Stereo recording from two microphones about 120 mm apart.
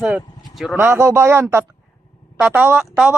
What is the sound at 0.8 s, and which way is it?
Speech, 20° right (ahead or behind).